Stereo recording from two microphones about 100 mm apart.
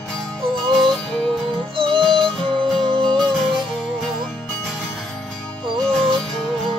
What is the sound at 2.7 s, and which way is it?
Music, 55° right (ahead or behind).